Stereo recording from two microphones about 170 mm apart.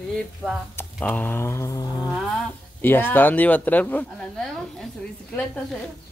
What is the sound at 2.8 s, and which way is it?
A woman's voice, 10° left (ahead or behind).